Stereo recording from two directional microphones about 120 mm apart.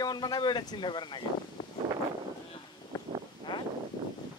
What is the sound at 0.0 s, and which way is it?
Speech, 35° left (ahead or behind).